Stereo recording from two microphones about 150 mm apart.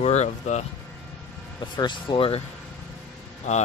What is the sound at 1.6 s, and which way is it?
Speech, 30° left (ahead or behind).